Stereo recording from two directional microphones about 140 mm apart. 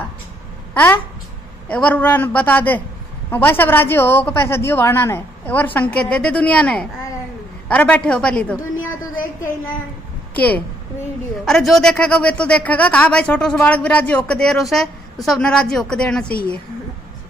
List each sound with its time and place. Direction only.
1.7 s speech: 10° left (ahead or behind)
9.1 s a sound: 75° left (ahead or behind)
10.3 s a woman's voice: 10° left (ahead or behind)